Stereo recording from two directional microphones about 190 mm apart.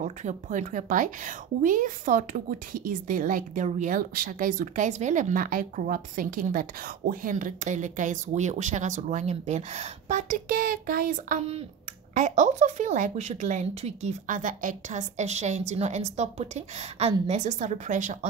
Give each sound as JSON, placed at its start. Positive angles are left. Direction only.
{"t": 0.0, "sound": "a woman's voice", "side_deg": -40}